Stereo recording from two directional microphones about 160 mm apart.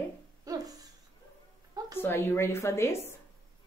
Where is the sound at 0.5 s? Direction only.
25° right (ahead or behind).